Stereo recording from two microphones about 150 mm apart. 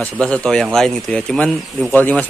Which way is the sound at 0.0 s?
5° left (ahead or behind).